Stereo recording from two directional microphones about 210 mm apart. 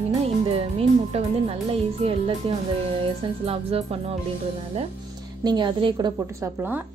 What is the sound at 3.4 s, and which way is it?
Speech, 25° right (ahead or behind).